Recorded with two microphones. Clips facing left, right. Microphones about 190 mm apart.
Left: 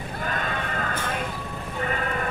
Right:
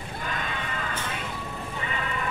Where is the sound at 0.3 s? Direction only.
50° left (ahead or behind).